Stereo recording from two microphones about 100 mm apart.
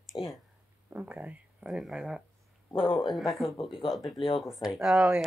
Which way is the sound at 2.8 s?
60° left (ahead or behind).